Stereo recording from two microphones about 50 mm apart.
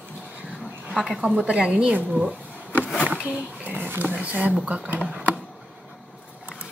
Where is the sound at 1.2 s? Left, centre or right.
Right.